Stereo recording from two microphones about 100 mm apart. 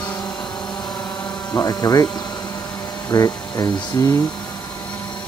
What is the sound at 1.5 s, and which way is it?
Speech, 35° left (ahead or behind).